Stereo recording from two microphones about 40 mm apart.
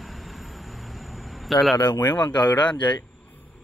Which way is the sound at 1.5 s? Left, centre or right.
Centre.